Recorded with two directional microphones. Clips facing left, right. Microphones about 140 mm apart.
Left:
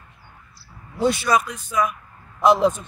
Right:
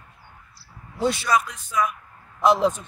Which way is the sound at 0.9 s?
15° left (ahead or behind).